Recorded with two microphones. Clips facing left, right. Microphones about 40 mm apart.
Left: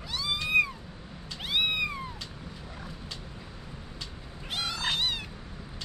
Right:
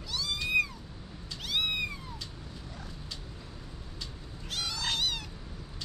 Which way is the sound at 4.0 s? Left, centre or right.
Left.